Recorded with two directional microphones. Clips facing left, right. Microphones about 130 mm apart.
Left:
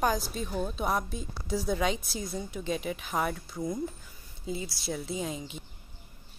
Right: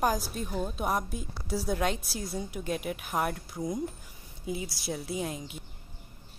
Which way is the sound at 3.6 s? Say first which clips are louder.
Even; 20° right (ahead or behind).